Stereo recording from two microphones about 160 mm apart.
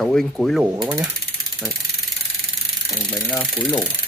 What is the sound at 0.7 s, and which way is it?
Ratchet, 20° right (ahead or behind).